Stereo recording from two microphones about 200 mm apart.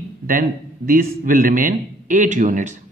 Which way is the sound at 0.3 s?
45° right (ahead or behind).